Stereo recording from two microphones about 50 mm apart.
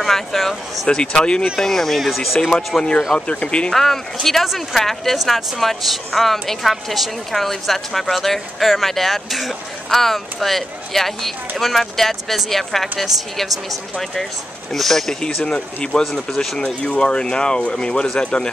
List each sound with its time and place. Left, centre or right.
0.0 s speech: centre
0.8 s speech: centre
1.6 s speech: centre
3.2 s speech: left
3.7 s speech: centre
14.7 s speech: centre
15.4 s speech: centre
16.6 s speech: left